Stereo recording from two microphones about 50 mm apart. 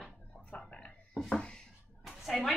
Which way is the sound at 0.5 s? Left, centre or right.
Left.